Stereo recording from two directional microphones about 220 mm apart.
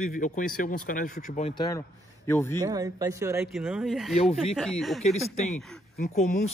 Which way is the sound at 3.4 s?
Centre (ahead or behind).